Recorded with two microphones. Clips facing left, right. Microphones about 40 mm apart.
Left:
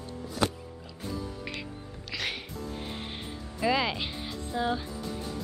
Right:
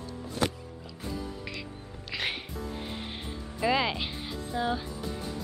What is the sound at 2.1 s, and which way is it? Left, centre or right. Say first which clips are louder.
Music: right 1 dB; centre.